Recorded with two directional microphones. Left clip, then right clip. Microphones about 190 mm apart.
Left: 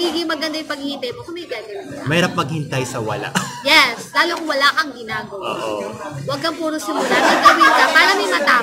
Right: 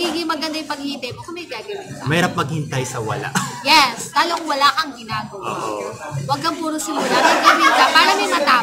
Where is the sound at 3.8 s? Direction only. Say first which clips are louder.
Left 1 dB; 25° right (ahead or behind).